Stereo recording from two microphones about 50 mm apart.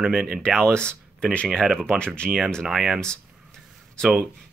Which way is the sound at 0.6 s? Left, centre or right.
Centre.